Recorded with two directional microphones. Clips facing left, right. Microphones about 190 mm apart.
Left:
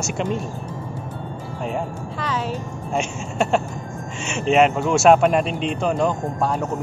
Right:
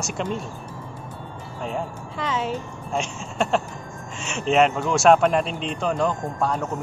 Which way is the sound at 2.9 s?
Centre (ahead or behind).